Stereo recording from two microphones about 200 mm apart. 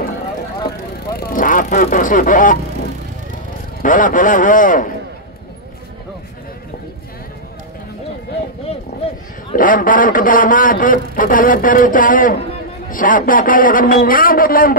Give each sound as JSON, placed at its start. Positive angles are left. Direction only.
{"t": 1.1, "sound": "speech", "side_deg": 45}
{"t": 3.8, "sound": "a man's voice", "side_deg": 40}
{"t": 8.9, "sound": "a sound", "side_deg": 55}
{"t": 9.5, "sound": "a man's voice", "side_deg": 40}